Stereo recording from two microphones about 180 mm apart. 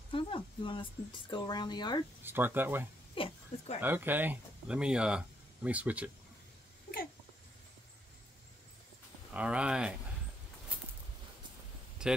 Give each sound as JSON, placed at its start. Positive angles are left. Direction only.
{"t": 0.1, "sound": "speech", "side_deg": 30}
{"t": 2.2, "sound": "speech", "side_deg": -10}
{"t": 3.2, "sound": "a sound", "side_deg": 35}
{"t": 3.8, "sound": "speech", "side_deg": -10}
{"t": 9.3, "sound": "speech", "side_deg": -5}
{"t": 12.0, "sound": "speech", "side_deg": -5}